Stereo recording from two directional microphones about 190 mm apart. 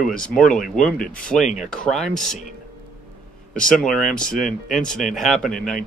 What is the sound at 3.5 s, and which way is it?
Speech, 5° left (ahead or behind).